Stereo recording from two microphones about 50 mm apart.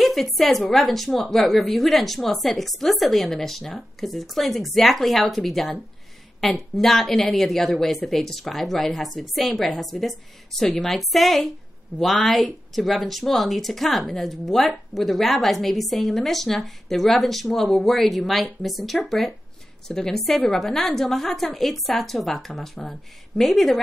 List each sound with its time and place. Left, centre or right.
0.0 s speech: centre